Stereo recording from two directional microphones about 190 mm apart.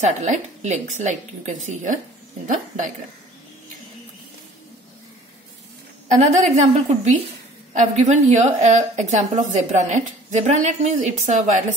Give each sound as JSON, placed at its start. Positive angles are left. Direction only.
{"t": 0.0, "sound": "a woman's voice", "side_deg": -40}
{"t": 6.2, "sound": "a woman's voice", "side_deg": -40}